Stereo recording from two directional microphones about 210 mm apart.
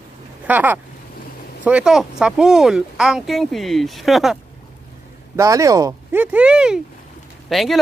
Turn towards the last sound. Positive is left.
turn(degrees=0)  # may be behind; listen again after turning